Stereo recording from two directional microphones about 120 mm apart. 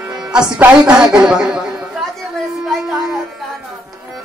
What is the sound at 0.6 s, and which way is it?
A woman's voice, 5° right (ahead or behind).